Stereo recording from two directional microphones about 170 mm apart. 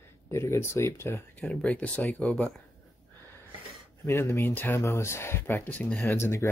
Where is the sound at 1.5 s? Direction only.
5° left (ahead or behind).